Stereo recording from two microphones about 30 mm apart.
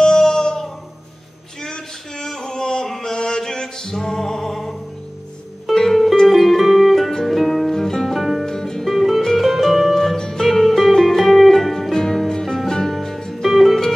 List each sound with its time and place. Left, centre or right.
0.0 s music: left
1.6 s music: centre
5.8 s music: centre
8.1 s music: centre
8.5 s music: centre
8.9 s music: centre
10.1 s music: left
10.4 s music: centre
13.4 s music: centre